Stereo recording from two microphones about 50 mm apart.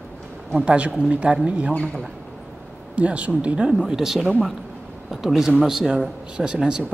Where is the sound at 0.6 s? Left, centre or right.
Right.